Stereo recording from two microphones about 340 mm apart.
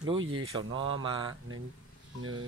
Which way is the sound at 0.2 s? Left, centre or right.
Right.